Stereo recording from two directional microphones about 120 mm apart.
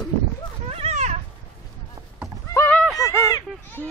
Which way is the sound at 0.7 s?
60° right (ahead or behind).